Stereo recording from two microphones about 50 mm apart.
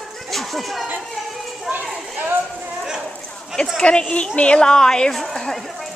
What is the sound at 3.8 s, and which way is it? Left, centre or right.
A woman's voice, centre.